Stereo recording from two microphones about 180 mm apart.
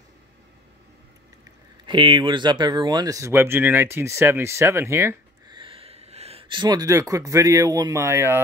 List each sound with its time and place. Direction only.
1.9 s speech: 25° right (ahead or behind)
5.6 s speech: 30° right (ahead or behind); by 8.4 s 15° right (ahead or behind)